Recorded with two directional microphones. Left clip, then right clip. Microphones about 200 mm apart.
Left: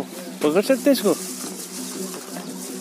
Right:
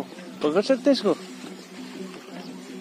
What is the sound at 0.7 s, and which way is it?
Speech, 25° left (ahead or behind).